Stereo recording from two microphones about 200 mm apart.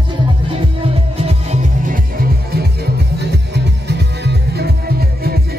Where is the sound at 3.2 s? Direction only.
55° right (ahead or behind).